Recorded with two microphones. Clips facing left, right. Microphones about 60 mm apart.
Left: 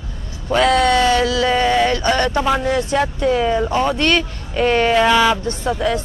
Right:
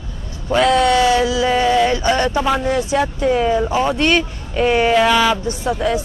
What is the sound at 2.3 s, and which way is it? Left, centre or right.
Speech, centre.